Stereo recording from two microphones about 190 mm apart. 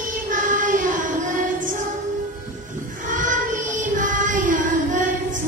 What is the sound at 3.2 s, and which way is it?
Child singing, 45° right (ahead or behind).